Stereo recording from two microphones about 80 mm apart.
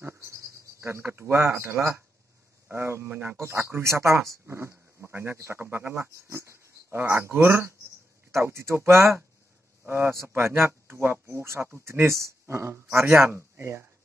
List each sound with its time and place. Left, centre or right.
0.0 s speech: right